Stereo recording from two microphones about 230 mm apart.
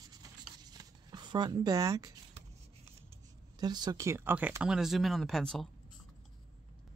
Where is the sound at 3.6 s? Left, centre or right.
Centre.